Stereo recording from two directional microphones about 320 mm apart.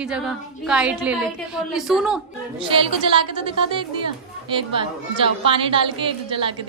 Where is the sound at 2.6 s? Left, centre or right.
Centre.